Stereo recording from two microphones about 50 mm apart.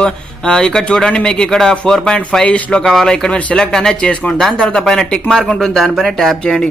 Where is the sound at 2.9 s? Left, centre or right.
Centre.